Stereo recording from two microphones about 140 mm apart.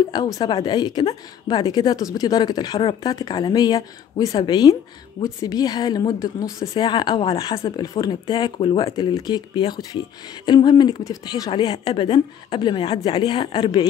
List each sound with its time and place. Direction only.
0.1 s a woman's voice: 30° left (ahead or behind)
8.9 s a woman's voice: 30° left (ahead or behind)